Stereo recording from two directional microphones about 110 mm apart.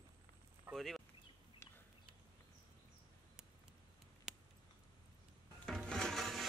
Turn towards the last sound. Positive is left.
turn(degrees=0)  # may be behind; listen again after turning